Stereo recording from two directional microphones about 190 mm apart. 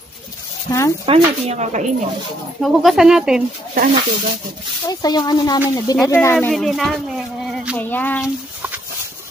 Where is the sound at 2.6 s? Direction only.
Centre (ahead or behind).